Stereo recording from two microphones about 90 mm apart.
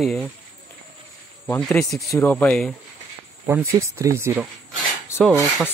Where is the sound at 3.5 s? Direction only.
30° right (ahead or behind).